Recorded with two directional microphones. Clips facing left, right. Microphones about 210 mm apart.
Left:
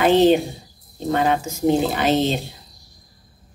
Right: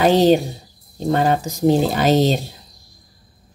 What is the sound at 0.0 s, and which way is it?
A woman's voice, 40° right (ahead or behind).